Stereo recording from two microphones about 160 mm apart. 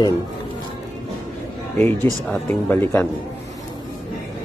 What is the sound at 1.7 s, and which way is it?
Speech, 10° left (ahead or behind).